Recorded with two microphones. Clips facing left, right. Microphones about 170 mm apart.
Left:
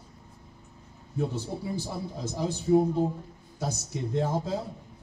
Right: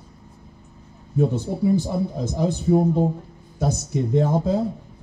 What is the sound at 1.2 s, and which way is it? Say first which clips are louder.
A man's voice: right 9 dB; 55° right (ahead or behind).